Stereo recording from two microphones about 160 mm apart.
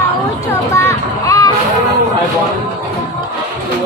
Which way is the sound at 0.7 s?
20° left (ahead or behind).